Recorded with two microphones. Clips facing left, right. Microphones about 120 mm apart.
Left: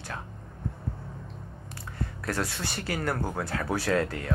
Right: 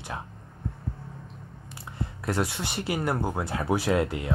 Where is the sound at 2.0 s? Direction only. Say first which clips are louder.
Right 3 dB; 20° right (ahead or behind).